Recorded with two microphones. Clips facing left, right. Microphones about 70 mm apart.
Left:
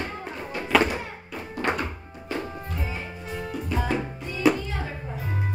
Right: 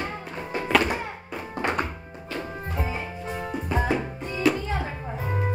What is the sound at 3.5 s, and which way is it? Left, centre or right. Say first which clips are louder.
Music: right 2 dB; right.